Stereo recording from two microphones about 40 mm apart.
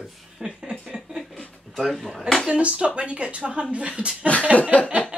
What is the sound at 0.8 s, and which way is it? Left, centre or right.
Speech, centre.